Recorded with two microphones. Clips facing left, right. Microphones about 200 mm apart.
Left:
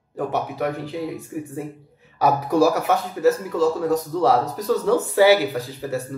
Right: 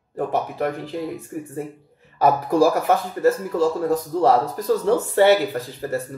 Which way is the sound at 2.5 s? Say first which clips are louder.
Left 1 dB; 30° right (ahead or behind).